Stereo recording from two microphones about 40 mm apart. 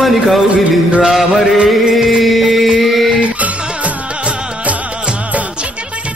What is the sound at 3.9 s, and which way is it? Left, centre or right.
Music, right.